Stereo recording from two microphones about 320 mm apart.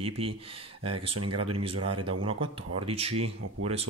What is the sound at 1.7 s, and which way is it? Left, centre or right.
Speech, right.